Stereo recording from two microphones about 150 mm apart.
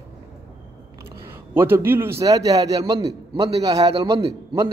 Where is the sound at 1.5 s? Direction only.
15° right (ahead or behind).